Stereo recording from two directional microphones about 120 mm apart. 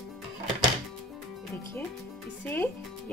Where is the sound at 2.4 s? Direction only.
15° left (ahead or behind).